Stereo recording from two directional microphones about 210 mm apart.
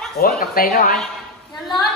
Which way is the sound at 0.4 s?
45° left (ahead or behind).